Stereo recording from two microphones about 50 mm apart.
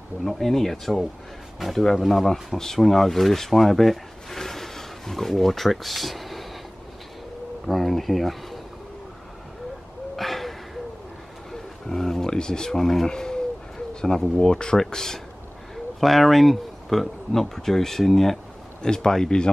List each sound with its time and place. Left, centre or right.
0.2 s speech: centre
7.6 s speech: centre
10.1 s a sound: centre
13.1 s speech: centre